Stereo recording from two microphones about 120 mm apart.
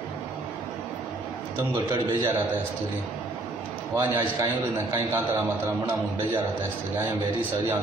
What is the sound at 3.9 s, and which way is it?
A man's voice, 25° right (ahead or behind).